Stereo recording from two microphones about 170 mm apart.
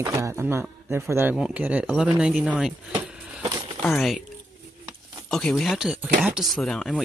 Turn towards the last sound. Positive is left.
turn(degrees=5)  # may be behind; listen again after turning